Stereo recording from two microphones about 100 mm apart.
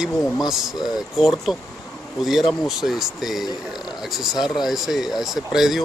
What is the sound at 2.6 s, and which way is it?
Speech, centre (ahead or behind).